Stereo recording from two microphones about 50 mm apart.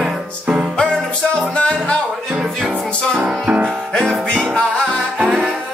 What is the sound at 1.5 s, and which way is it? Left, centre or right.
Music, left.